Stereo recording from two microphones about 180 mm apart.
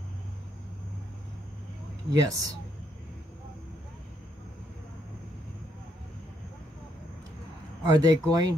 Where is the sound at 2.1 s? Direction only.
20° right (ahead or behind).